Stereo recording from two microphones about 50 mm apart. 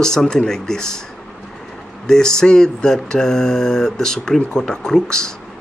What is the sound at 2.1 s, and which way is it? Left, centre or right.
Speech, centre.